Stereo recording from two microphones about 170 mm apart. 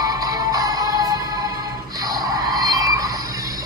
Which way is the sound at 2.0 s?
20° right (ahead or behind).